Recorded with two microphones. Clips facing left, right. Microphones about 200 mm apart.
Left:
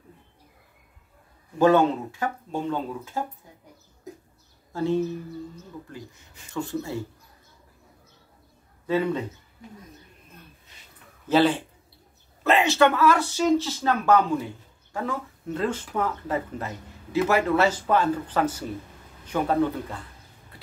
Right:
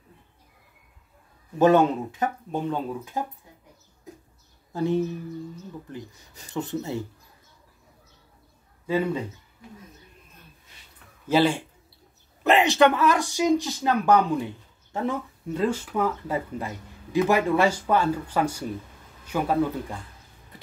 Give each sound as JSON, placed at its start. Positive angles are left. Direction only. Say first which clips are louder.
{"t": 1.6, "sound": "speech", "louder": "right 1 dB", "side_deg": -20}
{"t": 4.7, "sound": "speech", "louder": "even", "side_deg": -15}
{"t": 6.5, "sound": "speech", "louder": "right 1 dB", "side_deg": -20}
{"t": 8.8, "sound": "a man's voice", "louder": "left 1 dB", "side_deg": -10}
{"t": 11.2, "sound": "speech", "louder": "left 1 dB", "side_deg": -10}
{"t": 15.6, "sound": "speech", "louder": "right 2 dB", "side_deg": -10}